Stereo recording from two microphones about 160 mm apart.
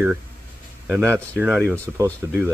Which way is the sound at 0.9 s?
15° right (ahead or behind).